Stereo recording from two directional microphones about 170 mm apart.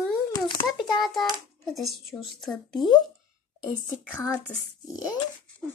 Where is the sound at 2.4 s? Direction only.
5° left (ahead or behind).